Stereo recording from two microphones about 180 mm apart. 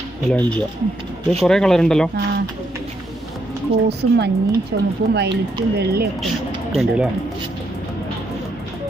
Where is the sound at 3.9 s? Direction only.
65° right (ahead or behind).